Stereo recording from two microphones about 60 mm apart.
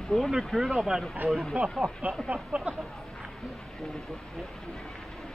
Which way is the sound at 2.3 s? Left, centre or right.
Centre.